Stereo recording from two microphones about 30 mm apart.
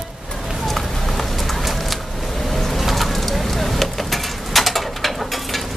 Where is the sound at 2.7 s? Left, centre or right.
Centre.